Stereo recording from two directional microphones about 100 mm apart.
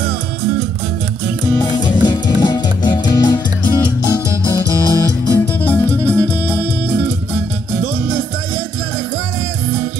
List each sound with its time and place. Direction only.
1.7 s music: 45° left (ahead or behind)
4.5 s music: 35° right (ahead or behind)
5.6 s music: 15° left (ahead or behind)